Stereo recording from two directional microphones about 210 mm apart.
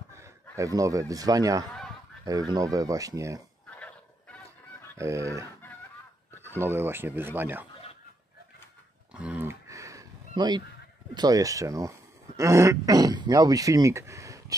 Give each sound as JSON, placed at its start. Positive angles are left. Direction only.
{"t": 0.2, "sound": "a man's voice", "side_deg": -15}
{"t": 4.9, "sound": "speech", "side_deg": -15}
{"t": 9.1, "sound": "a sound", "side_deg": -5}
{"t": 11.1, "sound": "speech", "side_deg": -15}